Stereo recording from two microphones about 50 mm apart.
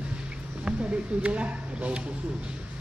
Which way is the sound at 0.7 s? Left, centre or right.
Right.